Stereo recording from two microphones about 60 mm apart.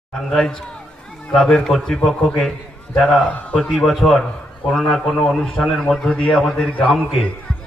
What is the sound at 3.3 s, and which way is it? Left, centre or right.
Speech, left.